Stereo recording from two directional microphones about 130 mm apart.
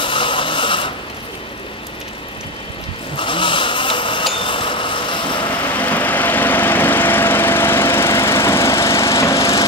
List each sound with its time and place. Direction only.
0.0 s printer: 40° left (ahead or behind)
3.2 s a sound: 40° left (ahead or behind)
5.6 s lawn mower: 10° left (ahead or behind)